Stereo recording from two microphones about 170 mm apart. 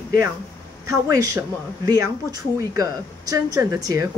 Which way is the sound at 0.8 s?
20° right (ahead or behind).